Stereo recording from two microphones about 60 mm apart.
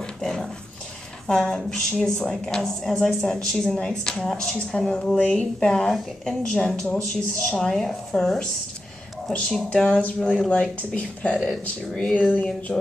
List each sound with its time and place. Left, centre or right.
0.0 s dog: centre
1.2 s a woman's voice: centre
9.5 s a woman's voice: centre
9.8 s speech: left
12.2 s speech: left